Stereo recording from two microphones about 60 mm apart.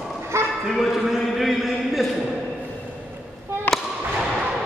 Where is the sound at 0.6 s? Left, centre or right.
Centre.